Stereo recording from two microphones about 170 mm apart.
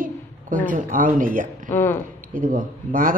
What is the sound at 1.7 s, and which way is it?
Speech, 15° left (ahead or behind).